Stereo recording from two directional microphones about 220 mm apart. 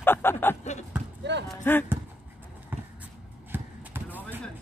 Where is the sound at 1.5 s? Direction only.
10° left (ahead or behind).